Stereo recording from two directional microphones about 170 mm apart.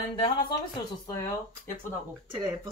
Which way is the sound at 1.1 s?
20° left (ahead or behind).